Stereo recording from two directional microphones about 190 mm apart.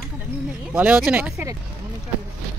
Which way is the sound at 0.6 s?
5° right (ahead or behind).